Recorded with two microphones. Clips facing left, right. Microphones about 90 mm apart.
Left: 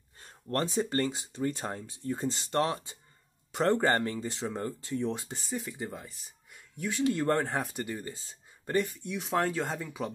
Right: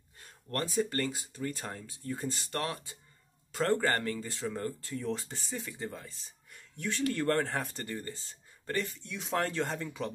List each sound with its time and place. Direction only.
0.2 s speech: 30° left (ahead or behind); by 9.8 s 10° left (ahead or behind)